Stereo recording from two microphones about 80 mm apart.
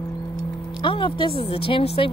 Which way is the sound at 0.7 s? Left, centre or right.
Left.